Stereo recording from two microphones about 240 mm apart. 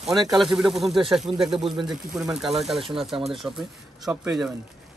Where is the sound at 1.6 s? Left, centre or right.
Centre.